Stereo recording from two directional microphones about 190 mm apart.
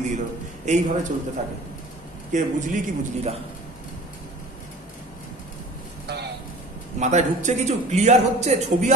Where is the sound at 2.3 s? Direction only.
40° right (ahead or behind).